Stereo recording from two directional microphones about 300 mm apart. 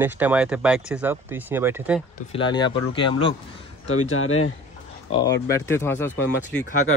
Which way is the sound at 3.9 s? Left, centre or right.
Left.